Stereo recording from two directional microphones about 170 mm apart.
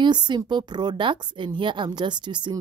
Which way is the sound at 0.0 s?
25° right (ahead or behind).